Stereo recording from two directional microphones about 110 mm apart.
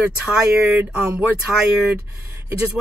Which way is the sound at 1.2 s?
15° right (ahead or behind).